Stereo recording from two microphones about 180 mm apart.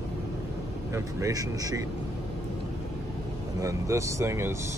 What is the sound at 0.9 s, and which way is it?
Speech, 15° right (ahead or behind).